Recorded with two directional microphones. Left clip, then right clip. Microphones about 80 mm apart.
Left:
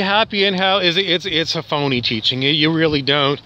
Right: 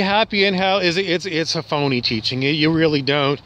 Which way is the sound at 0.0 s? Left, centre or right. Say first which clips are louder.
Left 1 dB; right.